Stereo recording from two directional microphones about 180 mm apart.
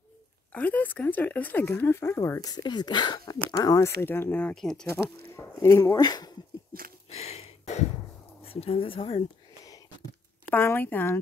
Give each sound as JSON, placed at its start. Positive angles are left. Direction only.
{"t": 0.5, "sound": "speech", "side_deg": 10}
{"t": 5.3, "sound": "speech", "side_deg": 15}
{"t": 7.1, "sound": "a sound", "side_deg": 35}
{"t": 8.5, "sound": "speech", "side_deg": 30}
{"t": 10.5, "sound": "speech", "side_deg": 10}